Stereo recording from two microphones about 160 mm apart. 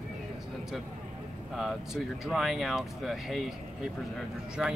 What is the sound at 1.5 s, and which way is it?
Speech, centre (ahead or behind).